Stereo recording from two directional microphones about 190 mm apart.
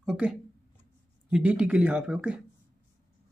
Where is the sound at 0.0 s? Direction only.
5° right (ahead or behind).